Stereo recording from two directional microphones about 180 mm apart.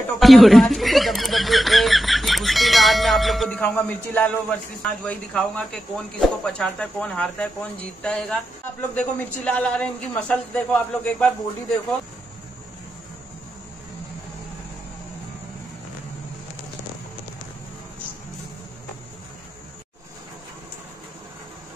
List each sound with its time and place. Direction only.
0.2 s speech: centre (ahead or behind)
8.0 s a sound: 5° left (ahead or behind)
8.9 s speech: 5° left (ahead or behind)